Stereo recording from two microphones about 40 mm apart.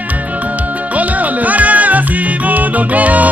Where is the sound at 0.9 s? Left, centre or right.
Right.